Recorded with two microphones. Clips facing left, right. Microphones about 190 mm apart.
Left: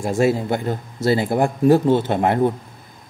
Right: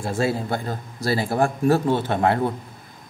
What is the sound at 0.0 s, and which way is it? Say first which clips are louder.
A man's voice: left 5 dB; 15° left (ahead or behind).